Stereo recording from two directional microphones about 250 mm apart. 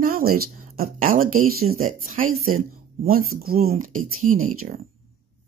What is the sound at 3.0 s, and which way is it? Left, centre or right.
Speech, right.